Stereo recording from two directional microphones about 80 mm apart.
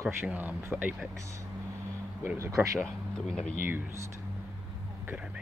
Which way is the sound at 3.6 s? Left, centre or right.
Right.